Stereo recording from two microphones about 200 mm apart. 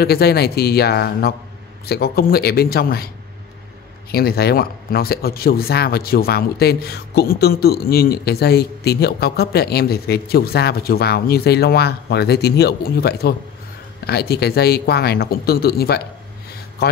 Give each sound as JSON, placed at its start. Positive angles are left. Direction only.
{"t": 0.0, "sound": "speech", "side_deg": 50}
{"t": 4.1, "sound": "speech", "side_deg": 50}